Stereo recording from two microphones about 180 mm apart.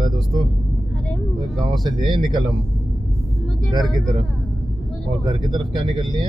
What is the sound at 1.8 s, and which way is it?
Speech, 25° right (ahead or behind).